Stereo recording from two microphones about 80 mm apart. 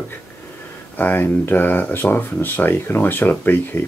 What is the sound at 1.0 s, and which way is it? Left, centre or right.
Speech, left.